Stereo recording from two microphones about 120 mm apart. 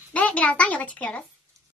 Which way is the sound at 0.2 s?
10° left (ahead or behind).